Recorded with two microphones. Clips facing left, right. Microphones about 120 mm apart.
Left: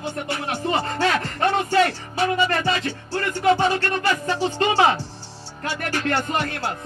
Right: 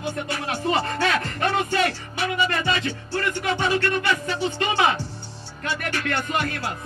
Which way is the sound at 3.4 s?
35° left (ahead or behind).